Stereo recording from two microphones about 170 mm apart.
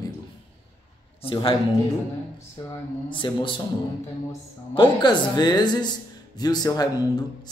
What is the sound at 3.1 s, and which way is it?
Speech, 30° left (ahead or behind).